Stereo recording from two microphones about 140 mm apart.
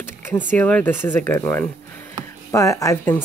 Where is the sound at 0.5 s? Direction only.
10° left (ahead or behind).